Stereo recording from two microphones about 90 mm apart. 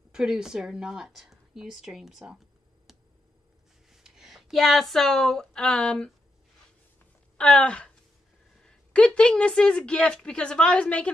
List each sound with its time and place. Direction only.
0.1 s a woman's voice: 5° right (ahead or behind)
3.9 s speech: 5° right (ahead or behind)
7.3 s a woman's voice: 10° left (ahead or behind)